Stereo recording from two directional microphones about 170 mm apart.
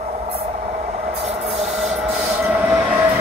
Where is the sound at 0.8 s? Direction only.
40° right (ahead or behind).